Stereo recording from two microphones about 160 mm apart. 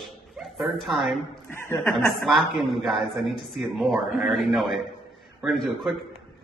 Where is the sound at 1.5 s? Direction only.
15° left (ahead or behind).